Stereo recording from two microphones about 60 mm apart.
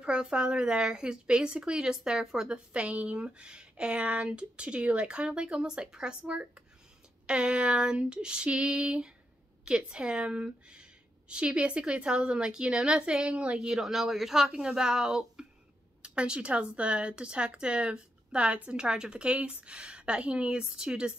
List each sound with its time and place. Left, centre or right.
0.0 s speech: centre